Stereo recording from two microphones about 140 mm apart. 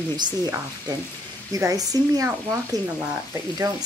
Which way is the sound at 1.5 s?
25° right (ahead or behind).